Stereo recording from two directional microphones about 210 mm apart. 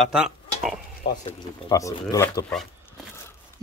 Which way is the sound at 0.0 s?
5° right (ahead or behind).